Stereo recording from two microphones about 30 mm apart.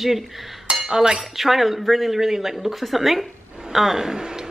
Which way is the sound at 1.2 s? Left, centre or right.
Centre.